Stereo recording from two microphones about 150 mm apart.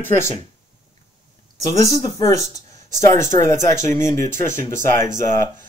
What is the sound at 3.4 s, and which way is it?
Speech, 20° left (ahead or behind).